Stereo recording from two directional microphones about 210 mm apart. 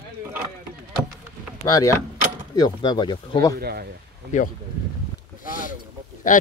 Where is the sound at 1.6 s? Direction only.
15° left (ahead or behind).